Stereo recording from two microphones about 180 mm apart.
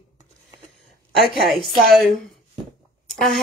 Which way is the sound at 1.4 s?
Centre (ahead or behind).